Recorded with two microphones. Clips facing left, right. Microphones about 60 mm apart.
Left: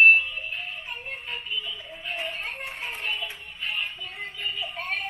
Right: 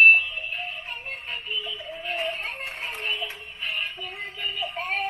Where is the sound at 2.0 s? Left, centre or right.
Right.